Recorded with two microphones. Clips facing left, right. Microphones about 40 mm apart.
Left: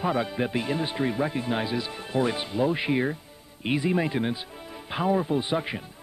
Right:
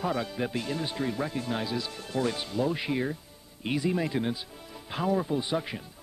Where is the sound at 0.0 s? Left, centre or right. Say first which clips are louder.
Left 4 dB; left.